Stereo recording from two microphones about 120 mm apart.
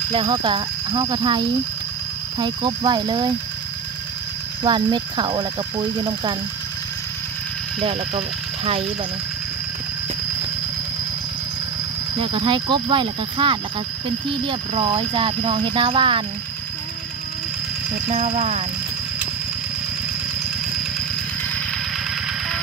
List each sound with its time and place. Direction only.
0.1 s speech: 45° right (ahead or behind)
4.6 s speech: 40° right (ahead or behind)
7.8 s speech: 55° right (ahead or behind)
12.2 s speech: 45° right (ahead or behind)
18.0 s speech: 80° right